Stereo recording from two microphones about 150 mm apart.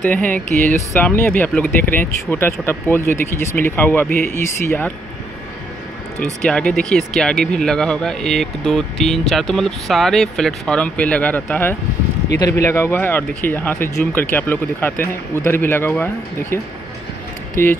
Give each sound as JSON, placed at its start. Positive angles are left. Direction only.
{"t": 0.0, "sound": "speech", "side_deg": 10}
{"t": 6.4, "sound": "speech", "side_deg": 5}
{"t": 17.6, "sound": "speech", "side_deg": 15}